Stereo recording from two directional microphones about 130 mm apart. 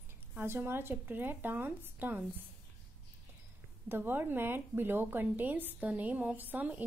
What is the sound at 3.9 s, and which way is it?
A woman's voice, 15° right (ahead or behind).